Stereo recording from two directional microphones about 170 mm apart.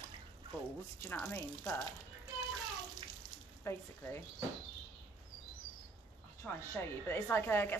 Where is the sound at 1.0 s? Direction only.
10° left (ahead or behind).